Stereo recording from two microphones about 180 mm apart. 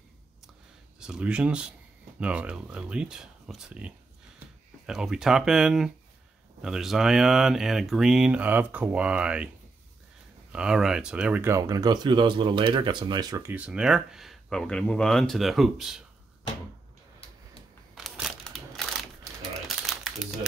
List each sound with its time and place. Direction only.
0.9 s speech: 5° right (ahead or behind)
10.5 s speech: 5° right (ahead or behind)
13.7 s speech: 5° right (ahead or behind)
17.9 s crushing: 5° right (ahead or behind)
19.9 s a sound: centre (ahead or behind)